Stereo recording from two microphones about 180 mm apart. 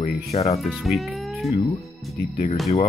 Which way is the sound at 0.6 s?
Centre (ahead or behind).